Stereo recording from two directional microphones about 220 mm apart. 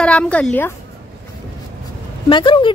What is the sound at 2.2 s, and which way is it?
Speech, 20° left (ahead or behind).